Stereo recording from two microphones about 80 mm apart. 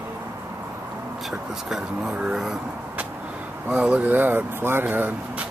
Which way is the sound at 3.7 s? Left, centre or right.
Centre.